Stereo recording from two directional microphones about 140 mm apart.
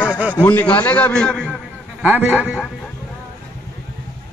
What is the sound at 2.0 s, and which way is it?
Speech, 10° right (ahead or behind).